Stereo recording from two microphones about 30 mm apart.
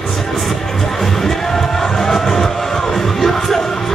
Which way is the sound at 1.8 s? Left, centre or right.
Centre.